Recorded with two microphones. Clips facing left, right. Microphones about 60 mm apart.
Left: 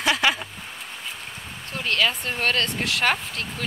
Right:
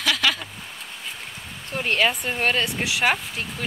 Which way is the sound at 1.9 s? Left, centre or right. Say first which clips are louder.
Right 1 dB; centre.